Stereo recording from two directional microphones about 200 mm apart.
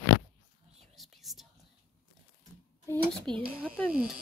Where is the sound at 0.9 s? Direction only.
Centre (ahead or behind).